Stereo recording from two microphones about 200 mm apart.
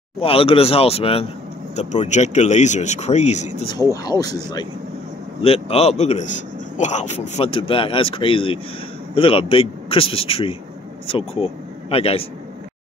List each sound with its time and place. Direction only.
0.2 s speech: 30° left (ahead or behind)
3.9 s speech: 20° left (ahead or behind)
5.4 s speech: 30° left (ahead or behind)